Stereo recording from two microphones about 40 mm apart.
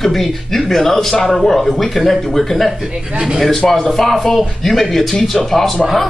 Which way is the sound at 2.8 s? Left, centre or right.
Right.